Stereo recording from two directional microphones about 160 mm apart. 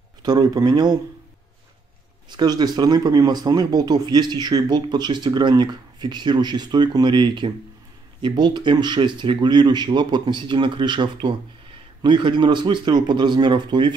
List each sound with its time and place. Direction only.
0.2 s speech: 25° right (ahead or behind)
2.2 s speech: 25° right (ahead or behind)